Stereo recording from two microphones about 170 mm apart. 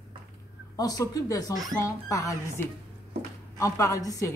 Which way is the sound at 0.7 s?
20° left (ahead or behind).